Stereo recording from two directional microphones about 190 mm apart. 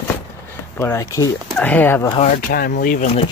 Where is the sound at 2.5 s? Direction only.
50° left (ahead or behind).